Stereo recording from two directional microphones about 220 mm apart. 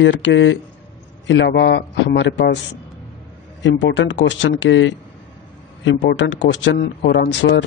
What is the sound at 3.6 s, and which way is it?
Speech, 55° left (ahead or behind).